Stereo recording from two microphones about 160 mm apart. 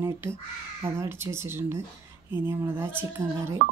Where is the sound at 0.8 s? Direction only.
15° right (ahead or behind).